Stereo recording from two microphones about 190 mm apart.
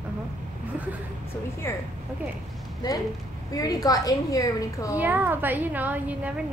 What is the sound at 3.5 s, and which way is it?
A woman's voice, 20° left (ahead or behind).